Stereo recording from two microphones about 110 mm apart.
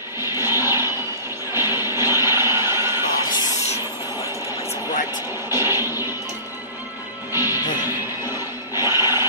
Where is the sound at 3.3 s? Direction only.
35° left (ahead or behind).